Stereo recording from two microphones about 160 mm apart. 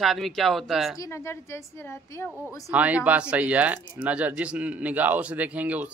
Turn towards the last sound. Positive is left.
turn(degrees=-10)  # may be behind; listen again after turning